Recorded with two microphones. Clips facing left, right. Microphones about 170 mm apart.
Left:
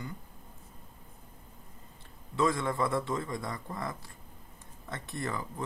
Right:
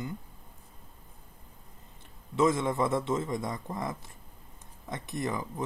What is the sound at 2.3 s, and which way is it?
Speech, 20° right (ahead or behind).